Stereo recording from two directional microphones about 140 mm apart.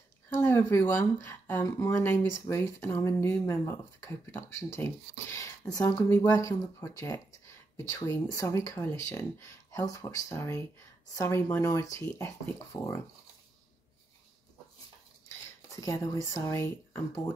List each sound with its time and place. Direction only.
0.3 s a woman's voice: 15° left (ahead or behind)
15.7 s speech: 25° left (ahead or behind)